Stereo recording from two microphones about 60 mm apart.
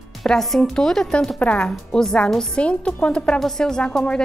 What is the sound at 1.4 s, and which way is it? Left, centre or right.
Speech, left.